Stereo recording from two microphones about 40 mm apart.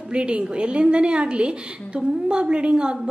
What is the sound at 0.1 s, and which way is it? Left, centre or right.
A woman's voice, right.